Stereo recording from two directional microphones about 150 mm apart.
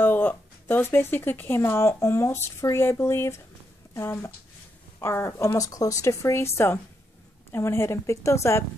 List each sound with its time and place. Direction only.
0.0 s speech: 10° left (ahead or behind)